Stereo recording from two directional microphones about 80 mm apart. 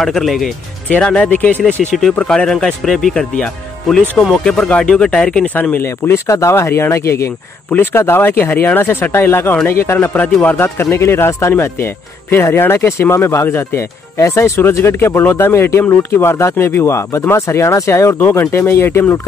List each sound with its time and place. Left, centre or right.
0.0 s speech: centre
0.8 s speech: centre
1.6 s speech: centre
5.6 s speech: left